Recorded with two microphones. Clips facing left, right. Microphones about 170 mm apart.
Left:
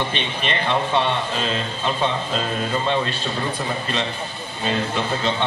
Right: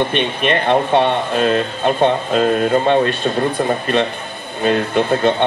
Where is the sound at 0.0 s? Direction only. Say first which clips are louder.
Right 8 dB; 55° right (ahead or behind).